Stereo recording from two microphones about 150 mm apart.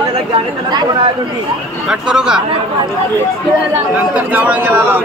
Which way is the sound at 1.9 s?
5° right (ahead or behind).